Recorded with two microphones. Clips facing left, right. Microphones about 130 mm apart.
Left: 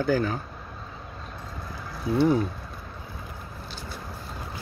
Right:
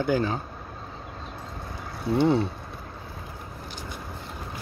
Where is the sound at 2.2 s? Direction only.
25° right (ahead or behind).